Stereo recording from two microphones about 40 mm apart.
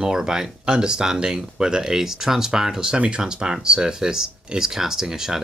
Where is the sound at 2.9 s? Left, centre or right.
Right.